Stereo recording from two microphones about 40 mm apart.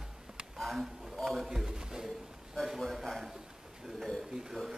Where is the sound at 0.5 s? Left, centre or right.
Centre.